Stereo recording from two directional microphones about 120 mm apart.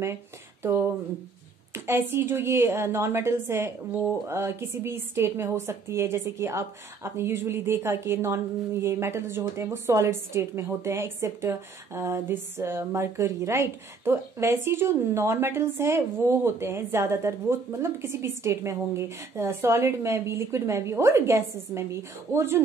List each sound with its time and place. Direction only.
0.0 s a woman's voice: 20° right (ahead or behind)